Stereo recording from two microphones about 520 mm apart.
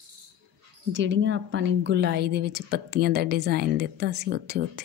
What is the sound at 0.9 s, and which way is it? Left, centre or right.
Speech, right.